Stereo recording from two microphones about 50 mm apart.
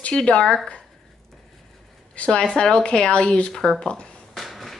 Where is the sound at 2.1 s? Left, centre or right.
Left.